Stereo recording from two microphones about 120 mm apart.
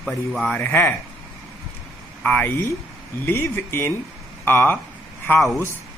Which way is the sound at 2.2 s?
15° left (ahead or behind).